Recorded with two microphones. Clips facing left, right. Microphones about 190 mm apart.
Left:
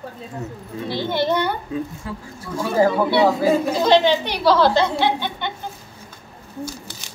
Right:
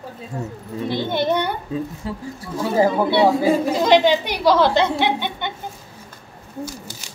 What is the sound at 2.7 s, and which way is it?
Speech, 20° right (ahead or behind).